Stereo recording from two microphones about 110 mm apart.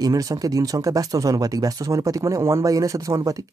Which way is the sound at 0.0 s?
30° right (ahead or behind).